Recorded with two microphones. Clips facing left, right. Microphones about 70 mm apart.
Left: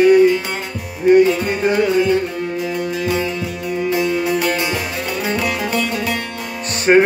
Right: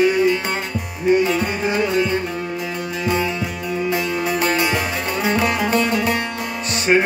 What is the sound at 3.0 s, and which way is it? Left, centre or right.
Music, right.